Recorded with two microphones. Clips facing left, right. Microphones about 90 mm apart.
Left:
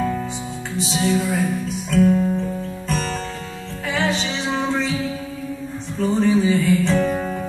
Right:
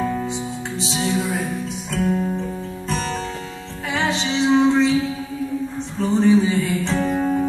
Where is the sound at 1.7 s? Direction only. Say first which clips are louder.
Left 7 dB; 25° right (ahead or behind).